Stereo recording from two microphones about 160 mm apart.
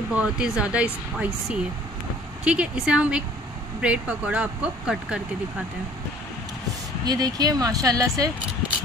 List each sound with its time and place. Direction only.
0.1 s speech: 10° right (ahead or behind)
7.1 s speech: 25° right (ahead or behind)